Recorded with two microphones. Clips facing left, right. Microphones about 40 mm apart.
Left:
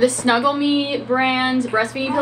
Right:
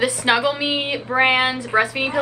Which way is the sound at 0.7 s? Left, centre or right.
Right.